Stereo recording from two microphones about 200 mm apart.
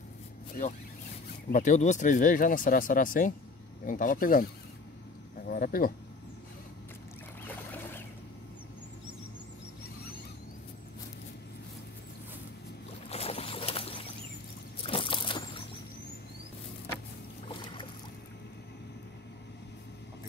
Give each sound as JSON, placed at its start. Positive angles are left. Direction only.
{"t": 1.5, "sound": "speech", "side_deg": 40}
{"t": 5.5, "sound": "speech", "side_deg": 45}
{"t": 7.4, "sound": "boat", "side_deg": 10}
{"t": 13.1, "sound": "boat", "side_deg": 30}
{"t": 14.8, "sound": "a sound", "side_deg": 25}
{"t": 17.5, "sound": "boat", "side_deg": 25}